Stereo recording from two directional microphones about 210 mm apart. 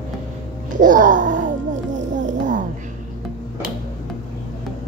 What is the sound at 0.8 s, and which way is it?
Speech, 40° right (ahead or behind).